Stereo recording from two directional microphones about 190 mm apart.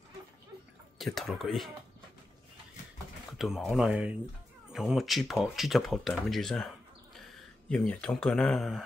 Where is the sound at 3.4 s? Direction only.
Centre (ahead or behind).